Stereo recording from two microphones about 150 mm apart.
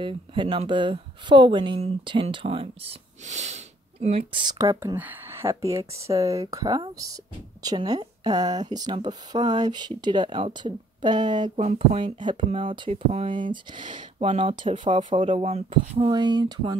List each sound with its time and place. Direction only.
0.0 s speech: 35° right (ahead or behind); by 4.2 s 50° right (ahead or behind)
4.3 s speech: 35° right (ahead or behind)
4.6 s speech: 20° right (ahead or behind)
11.5 s speech: 45° right (ahead or behind); by 16.7 s 25° right (ahead or behind)